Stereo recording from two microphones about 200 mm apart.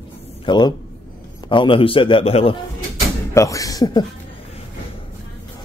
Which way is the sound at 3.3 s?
15° left (ahead or behind).